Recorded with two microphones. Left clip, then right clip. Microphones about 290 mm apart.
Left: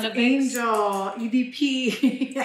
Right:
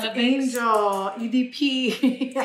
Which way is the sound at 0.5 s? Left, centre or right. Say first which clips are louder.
Right 2 dB; centre.